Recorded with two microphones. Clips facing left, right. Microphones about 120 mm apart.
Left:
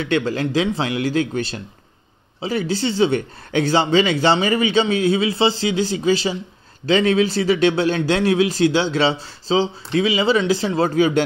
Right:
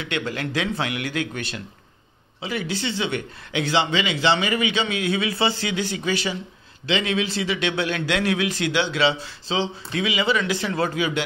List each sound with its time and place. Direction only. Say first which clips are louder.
0.0 s speech: left 7 dB; 35° left (ahead or behind)
6.9 s speech: left 7 dB; 40° left (ahead or behind)